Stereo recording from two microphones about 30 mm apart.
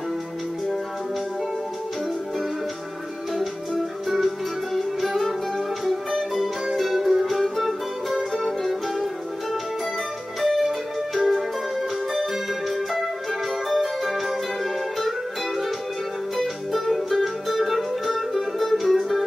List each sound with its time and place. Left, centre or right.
3.3 s music: centre